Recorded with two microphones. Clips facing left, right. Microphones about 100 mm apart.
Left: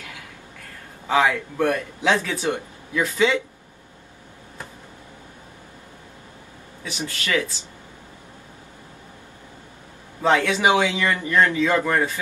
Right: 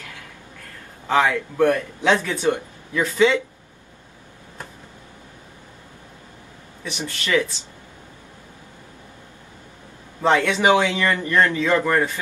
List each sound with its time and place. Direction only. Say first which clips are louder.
1.0 s speech: right 1 dB; 15° left (ahead or behind)
1.7 s speech: right 2 dB; 5° left (ahead or behind)
7.0 s speech: right 3 dB; 20° right (ahead or behind)
10.2 s a man's voice: right 1 dB; 5° left (ahead or behind)
10.5 s speech: right 2 dB; 20° left (ahead or behind)